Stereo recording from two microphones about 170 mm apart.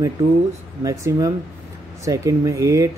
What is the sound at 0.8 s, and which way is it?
Speech, 20° right (ahead or behind).